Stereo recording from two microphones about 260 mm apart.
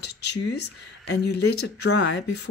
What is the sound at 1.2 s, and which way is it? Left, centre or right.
Speech, left.